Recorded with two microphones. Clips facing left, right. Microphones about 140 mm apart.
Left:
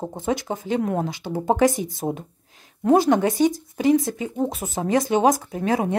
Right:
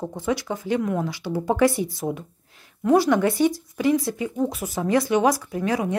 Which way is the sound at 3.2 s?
20° left (ahead or behind).